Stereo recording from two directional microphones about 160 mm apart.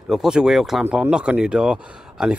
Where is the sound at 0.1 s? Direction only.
5° right (ahead or behind).